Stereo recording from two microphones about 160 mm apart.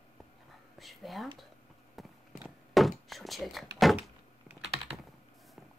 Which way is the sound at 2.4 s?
Centre (ahead or behind).